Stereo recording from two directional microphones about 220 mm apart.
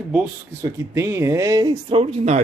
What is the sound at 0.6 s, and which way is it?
Speech, 15° right (ahead or behind).